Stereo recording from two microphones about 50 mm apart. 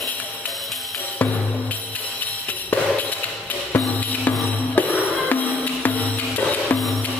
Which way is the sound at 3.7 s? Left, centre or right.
Left.